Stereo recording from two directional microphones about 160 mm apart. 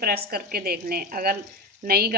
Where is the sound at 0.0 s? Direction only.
70° right (ahead or behind).